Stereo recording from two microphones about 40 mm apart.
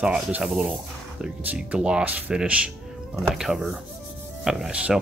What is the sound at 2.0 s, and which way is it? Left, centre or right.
Speech, right.